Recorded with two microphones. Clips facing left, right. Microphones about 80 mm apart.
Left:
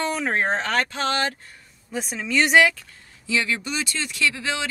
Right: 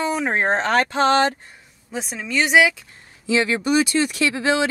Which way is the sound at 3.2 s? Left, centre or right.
Right.